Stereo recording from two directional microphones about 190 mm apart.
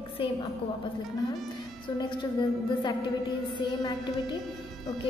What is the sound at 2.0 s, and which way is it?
Speech, 25° left (ahead or behind).